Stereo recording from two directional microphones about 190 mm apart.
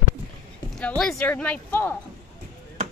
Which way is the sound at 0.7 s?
5° left (ahead or behind).